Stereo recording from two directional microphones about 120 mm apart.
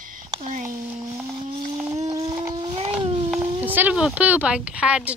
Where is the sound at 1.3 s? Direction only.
40° right (ahead or behind).